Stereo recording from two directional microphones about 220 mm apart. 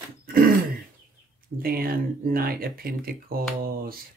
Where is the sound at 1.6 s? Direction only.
40° right (ahead or behind).